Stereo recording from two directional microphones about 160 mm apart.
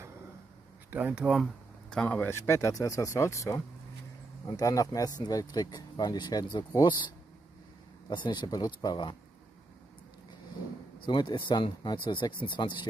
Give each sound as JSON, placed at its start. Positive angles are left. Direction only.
{"t": 0.8, "sound": "speech", "side_deg": -10}
{"t": 11.1, "sound": "speech", "side_deg": 30}